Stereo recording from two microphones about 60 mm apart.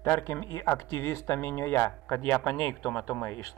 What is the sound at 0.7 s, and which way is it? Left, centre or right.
Speech, left.